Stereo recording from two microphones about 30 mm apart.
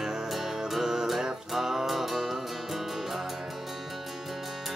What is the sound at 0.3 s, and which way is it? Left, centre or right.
Music, centre.